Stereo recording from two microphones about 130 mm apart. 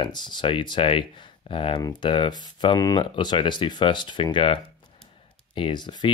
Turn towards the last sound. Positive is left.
turn(degrees=35)  # may be behind; listen again after turning